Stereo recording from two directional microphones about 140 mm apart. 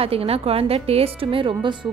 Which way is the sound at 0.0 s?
45° right (ahead or behind).